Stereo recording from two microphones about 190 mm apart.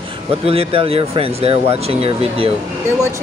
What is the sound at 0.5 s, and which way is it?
Speech, 30° right (ahead or behind).